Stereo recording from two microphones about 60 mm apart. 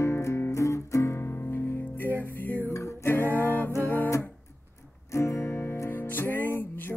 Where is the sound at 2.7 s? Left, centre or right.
Left.